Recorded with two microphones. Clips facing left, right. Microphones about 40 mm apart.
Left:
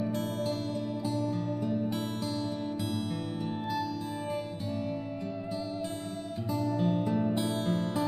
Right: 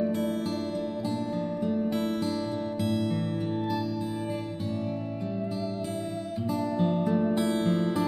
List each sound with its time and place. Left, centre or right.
1.0 s music: centre
2.8 s music: centre
6.6 s music: centre